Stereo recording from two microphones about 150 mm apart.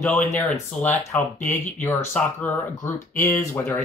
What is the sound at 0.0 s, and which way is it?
Speech, 10° left (ahead or behind).